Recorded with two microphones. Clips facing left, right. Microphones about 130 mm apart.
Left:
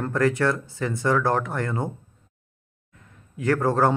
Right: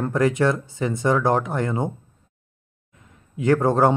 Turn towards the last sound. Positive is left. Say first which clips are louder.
# right 3 dB
turn(degrees=-20)  # may be behind; listen again after turning